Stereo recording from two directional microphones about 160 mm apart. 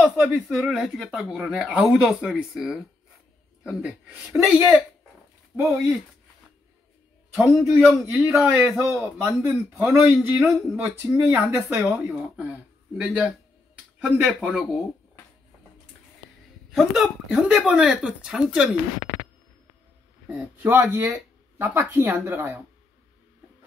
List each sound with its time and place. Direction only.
0.0 s speech: centre (ahead or behind)
7.3 s speech: centre (ahead or behind)
16.7 s speech: centre (ahead or behind)
20.2 s speech: 10° right (ahead or behind)